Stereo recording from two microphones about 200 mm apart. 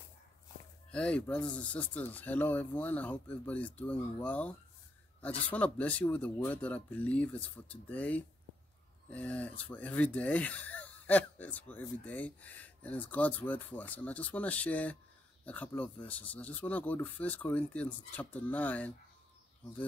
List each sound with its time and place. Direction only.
0.9 s speech: 5° left (ahead or behind)